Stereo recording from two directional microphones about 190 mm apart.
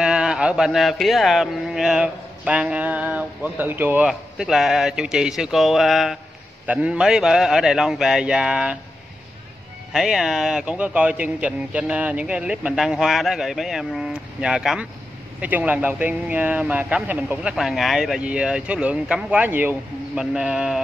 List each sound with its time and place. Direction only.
0.0 s speech: 5° right (ahead or behind)
9.9 s speech: centre (ahead or behind)